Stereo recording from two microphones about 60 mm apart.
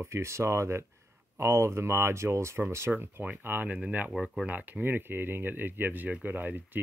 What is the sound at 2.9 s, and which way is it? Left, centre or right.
Speech, right.